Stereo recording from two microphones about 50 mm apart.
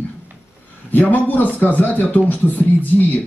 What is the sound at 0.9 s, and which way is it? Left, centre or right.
Mantra, left.